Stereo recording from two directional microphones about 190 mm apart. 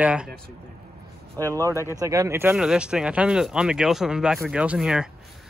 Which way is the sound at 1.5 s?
15° right (ahead or behind).